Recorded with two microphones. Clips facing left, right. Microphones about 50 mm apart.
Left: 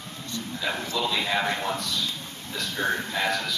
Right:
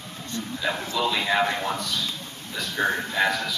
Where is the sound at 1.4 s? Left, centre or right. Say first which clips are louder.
Right 1 dB; centre.